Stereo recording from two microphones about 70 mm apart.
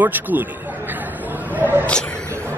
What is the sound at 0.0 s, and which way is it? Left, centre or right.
A man's voice, right.